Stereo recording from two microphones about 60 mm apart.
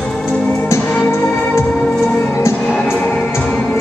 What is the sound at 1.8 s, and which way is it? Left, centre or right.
Music, centre.